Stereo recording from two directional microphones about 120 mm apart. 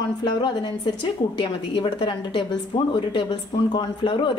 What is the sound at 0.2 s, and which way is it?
A woman's voice, 40° left (ahead or behind).